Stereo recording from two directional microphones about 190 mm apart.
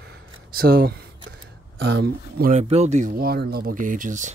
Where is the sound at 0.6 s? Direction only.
55° right (ahead or behind).